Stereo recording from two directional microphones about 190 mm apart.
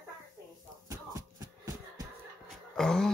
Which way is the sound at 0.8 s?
15° right (ahead or behind).